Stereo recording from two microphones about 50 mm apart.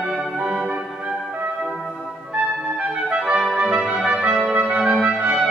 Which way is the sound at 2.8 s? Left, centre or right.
Right.